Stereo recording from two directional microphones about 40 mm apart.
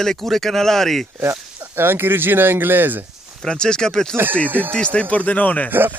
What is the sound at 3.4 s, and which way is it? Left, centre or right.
Speech, centre.